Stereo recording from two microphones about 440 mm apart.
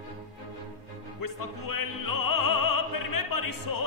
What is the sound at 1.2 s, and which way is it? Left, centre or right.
Opera, left.